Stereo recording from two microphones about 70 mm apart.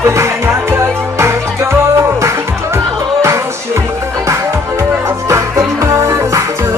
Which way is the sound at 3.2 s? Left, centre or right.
Right.